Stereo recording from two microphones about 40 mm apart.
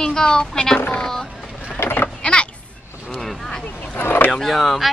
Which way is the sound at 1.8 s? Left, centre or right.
Left.